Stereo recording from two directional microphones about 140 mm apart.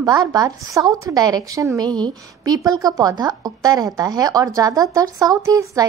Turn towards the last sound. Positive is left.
turn(degrees=-25)  # may be behind; listen again after turning